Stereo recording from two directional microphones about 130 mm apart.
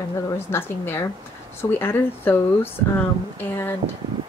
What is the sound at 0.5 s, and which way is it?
A woman's voice, 15° left (ahead or behind).